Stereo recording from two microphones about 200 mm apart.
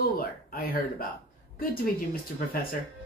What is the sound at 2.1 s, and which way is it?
Speech, 45° left (ahead or behind).